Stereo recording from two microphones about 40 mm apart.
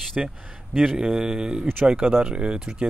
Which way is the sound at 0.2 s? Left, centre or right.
Centre.